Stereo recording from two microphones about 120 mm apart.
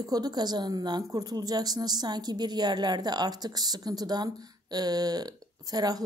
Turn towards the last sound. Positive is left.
turn(degrees=-30)  # may be behind; listen again after turning